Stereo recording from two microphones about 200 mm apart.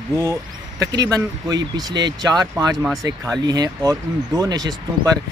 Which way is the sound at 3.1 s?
20° right (ahead or behind).